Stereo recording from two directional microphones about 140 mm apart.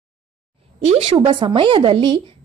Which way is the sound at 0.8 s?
50° right (ahead or behind).